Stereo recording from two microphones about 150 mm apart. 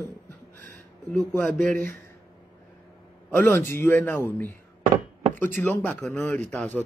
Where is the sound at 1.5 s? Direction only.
65° right (ahead or behind).